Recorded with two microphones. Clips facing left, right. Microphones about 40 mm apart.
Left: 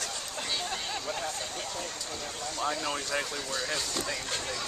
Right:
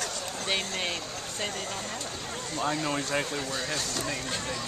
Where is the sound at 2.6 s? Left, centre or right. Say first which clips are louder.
Right 3 dB; centre.